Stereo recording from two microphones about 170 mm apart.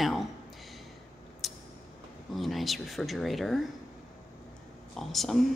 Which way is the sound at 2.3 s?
Centre (ahead or behind).